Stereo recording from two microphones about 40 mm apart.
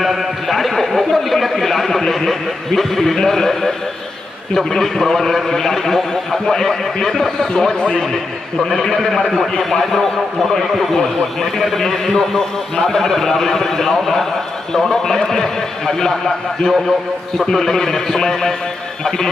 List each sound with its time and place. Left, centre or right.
0.0 s a sound: centre
3.3 s a man's voice: centre
8.0 s a man's voice: centre
11.5 s a man's voice: centre